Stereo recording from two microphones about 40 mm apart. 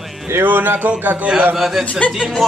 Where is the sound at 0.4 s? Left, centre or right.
Right.